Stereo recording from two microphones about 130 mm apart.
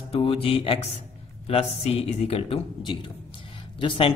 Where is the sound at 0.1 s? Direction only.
45° left (ahead or behind).